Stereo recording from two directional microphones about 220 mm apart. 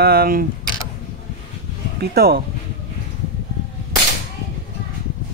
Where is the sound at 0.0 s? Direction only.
45° right (ahead or behind).